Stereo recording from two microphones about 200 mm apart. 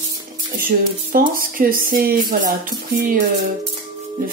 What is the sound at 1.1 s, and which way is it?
Speech, 45° right (ahead or behind).